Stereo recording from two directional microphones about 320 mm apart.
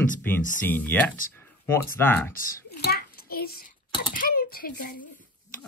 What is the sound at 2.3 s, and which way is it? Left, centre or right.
Hands, left.